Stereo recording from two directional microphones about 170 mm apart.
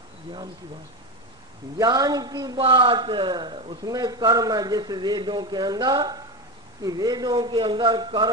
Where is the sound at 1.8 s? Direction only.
20° right (ahead or behind).